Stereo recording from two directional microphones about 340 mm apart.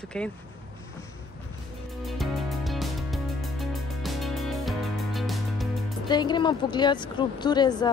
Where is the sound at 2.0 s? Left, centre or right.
Centre.